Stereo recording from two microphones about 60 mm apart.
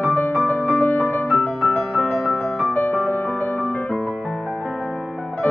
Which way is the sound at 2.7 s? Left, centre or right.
Left.